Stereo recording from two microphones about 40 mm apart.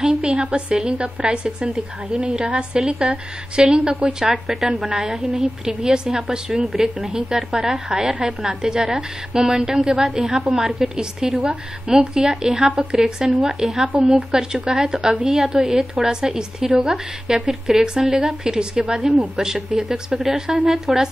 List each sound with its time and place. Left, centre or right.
0.0 s a woman's voice: right
6.6 s a woman's voice: centre